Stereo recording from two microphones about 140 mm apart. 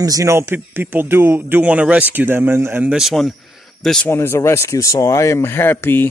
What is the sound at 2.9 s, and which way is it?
Speech, 5° right (ahead or behind).